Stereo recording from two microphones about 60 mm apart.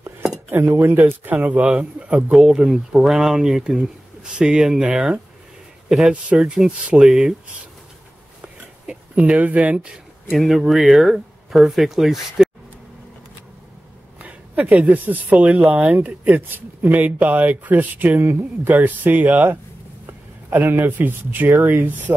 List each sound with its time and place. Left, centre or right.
0.5 s speech: right
1.6 s speech: centre
2.3 s speech: centre
5.9 s a man's voice: centre
8.4 s a sound: centre
10.3 s speech: centre
14.2 s speech: right